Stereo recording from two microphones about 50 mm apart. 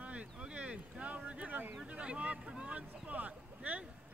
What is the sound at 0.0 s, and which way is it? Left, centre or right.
Boat, right.